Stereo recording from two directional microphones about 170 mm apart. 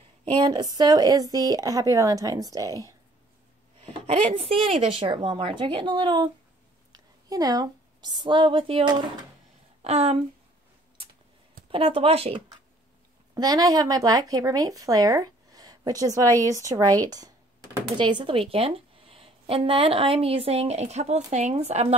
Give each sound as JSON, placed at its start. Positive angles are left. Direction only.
{"t": 0.2, "sound": "speech", "side_deg": -30}
{"t": 4.1, "sound": "a woman's voice", "side_deg": -35}
{"t": 11.7, "sound": "speech", "side_deg": -30}
{"t": 13.3, "sound": "speech", "side_deg": -20}